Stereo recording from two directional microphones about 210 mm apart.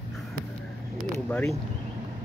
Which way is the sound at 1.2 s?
10° left (ahead or behind).